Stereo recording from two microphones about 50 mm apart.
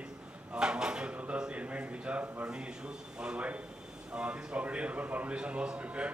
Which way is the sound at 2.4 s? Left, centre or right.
Centre.